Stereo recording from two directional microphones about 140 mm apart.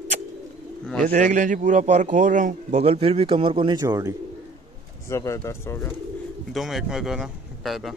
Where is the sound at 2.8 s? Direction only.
45° right (ahead or behind); by 4.1 s 25° right (ahead or behind).